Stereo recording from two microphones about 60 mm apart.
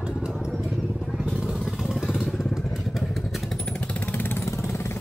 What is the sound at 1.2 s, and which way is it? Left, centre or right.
Vehicle, centre.